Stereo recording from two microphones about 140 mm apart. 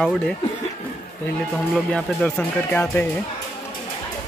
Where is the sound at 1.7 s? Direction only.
5° left (ahead or behind).